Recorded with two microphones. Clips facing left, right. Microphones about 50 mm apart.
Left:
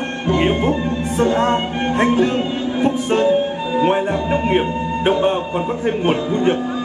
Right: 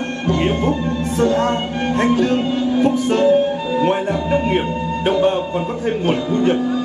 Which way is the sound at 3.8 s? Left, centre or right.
Centre.